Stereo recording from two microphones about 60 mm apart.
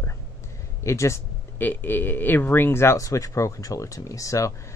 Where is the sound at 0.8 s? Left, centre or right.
Left.